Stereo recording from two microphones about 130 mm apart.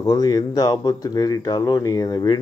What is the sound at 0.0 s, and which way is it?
Speech, 30° left (ahead or behind).